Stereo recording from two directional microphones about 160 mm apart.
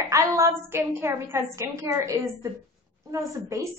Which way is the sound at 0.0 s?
20° right (ahead or behind).